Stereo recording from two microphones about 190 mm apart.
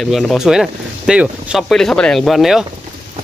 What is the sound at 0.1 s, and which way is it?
Speech, centre (ahead or behind).